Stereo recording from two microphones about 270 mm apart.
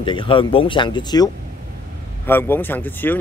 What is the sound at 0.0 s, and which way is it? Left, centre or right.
Speech, centre.